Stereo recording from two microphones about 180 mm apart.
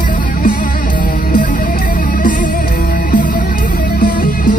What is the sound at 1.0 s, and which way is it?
Music, 50° left (ahead or behind).